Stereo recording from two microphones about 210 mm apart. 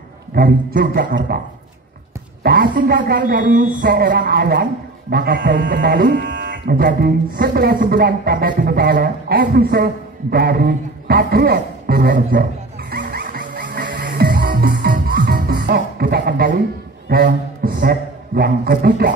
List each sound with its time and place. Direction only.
0.3 s speech: 45° right (ahead or behind)
2.4 s speech: 45° right (ahead or behind)
12.9 s music: 45° right (ahead or behind)
17.1 s speech: 45° right (ahead or behind)